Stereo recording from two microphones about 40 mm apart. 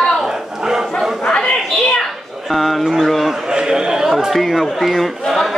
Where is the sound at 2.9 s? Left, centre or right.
Centre.